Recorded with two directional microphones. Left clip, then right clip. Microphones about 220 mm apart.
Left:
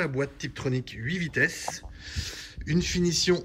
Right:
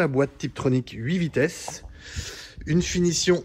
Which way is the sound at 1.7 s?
5° right (ahead or behind).